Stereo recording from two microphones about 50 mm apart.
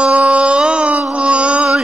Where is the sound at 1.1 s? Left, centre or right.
Right.